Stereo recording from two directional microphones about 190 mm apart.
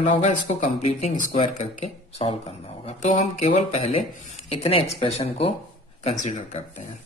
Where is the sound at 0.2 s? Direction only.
35° left (ahead or behind).